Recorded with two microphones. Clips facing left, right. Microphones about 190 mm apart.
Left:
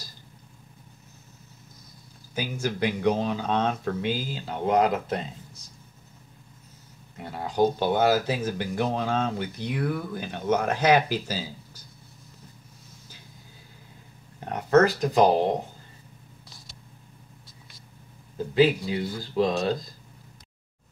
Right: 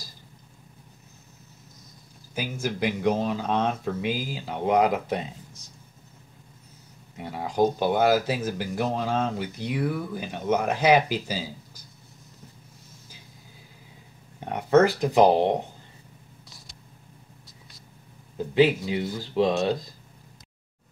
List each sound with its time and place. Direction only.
2.3 s speech: 5° right (ahead or behind)
7.2 s speech: 5° right (ahead or behind)
14.4 s speech: 15° right (ahead or behind)
18.5 s speech: 15° right (ahead or behind)